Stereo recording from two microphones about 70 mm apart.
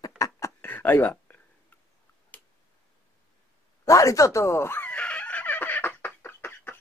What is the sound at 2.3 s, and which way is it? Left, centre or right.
Tick-tock, left.